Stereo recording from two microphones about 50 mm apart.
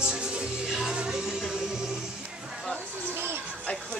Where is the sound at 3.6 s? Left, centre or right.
Left.